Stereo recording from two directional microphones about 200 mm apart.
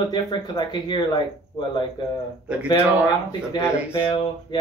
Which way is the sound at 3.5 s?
15° left (ahead or behind).